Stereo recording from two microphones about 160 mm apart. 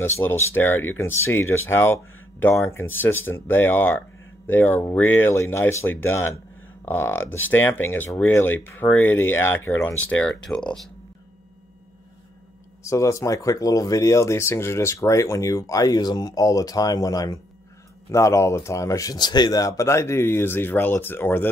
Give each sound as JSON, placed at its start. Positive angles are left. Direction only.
{"t": 0.0, "sound": "speech", "side_deg": 15}
{"t": 12.8, "sound": "speech", "side_deg": 20}